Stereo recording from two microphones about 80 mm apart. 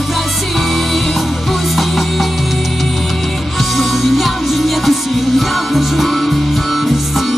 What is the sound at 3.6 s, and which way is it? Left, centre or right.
Music, centre.